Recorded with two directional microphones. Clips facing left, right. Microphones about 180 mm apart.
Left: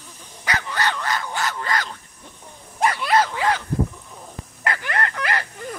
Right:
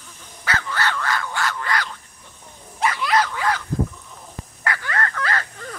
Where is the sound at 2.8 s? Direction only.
35° left (ahead or behind).